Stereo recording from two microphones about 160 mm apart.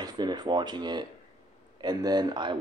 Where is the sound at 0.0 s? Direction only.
25° right (ahead or behind).